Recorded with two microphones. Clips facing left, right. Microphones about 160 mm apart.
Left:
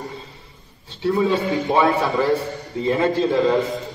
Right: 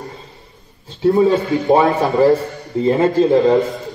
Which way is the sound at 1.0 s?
40° right (ahead or behind).